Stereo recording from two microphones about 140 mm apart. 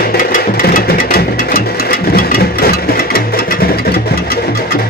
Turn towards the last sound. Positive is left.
turn(degrees=90)